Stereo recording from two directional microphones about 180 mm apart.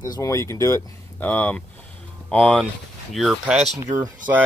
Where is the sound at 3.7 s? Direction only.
20° right (ahead or behind).